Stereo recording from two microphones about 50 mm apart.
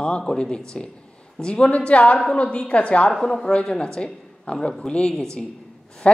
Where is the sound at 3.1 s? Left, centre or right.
Centre.